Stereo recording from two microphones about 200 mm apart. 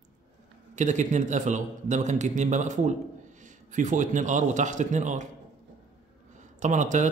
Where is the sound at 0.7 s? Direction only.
40° right (ahead or behind).